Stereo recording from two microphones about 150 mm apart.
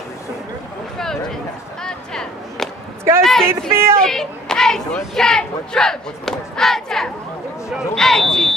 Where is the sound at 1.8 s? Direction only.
5° left (ahead or behind).